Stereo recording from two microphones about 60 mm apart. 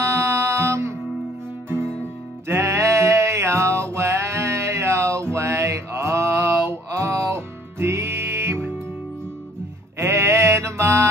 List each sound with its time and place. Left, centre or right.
0.0 s music: right
2.4 s music: right
9.9 s music: right